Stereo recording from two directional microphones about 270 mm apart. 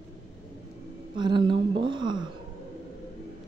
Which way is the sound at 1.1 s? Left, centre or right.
Centre.